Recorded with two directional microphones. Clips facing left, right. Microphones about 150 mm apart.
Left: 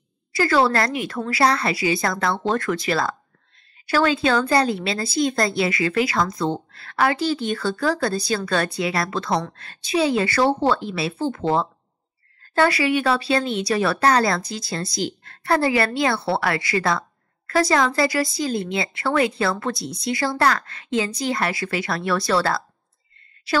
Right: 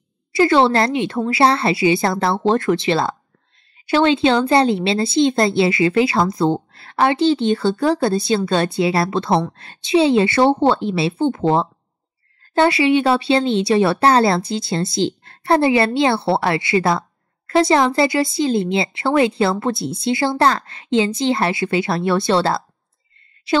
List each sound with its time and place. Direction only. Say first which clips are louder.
0.3 s speech: right 5 dB; 25° right (ahead or behind)